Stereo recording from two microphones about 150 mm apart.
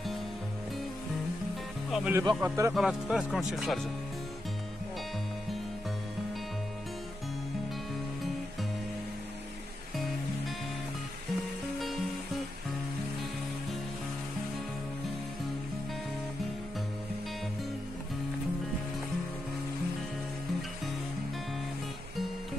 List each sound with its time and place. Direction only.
1.9 s speech: centre (ahead or behind)
2.2 s speech: 20° right (ahead or behind)
2.7 s speech: 5° right (ahead or behind)